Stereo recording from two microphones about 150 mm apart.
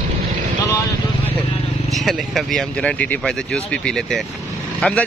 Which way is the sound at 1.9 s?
Centre (ahead or behind).